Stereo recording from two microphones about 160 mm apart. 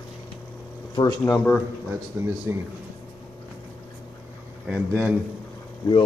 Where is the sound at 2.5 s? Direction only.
15° right (ahead or behind).